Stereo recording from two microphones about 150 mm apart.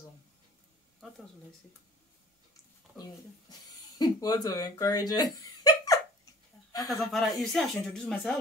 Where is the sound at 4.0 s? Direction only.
25° left (ahead or behind).